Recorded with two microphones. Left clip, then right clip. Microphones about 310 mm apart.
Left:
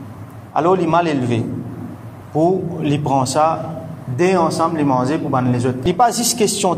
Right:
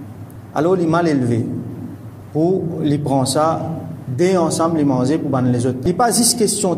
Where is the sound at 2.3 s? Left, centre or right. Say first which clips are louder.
Left 1 dB; left.